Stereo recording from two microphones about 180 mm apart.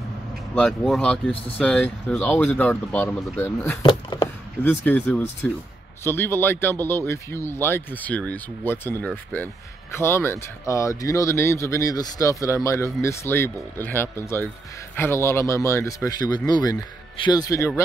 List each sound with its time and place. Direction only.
0.6 s speech: 5° left (ahead or behind)
3.8 s speech: 25° left (ahead or behind)
4.6 s speech: 10° left (ahead or behind)